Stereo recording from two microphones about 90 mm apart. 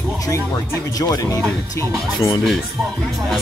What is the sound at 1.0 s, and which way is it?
Speech, 40° left (ahead or behind).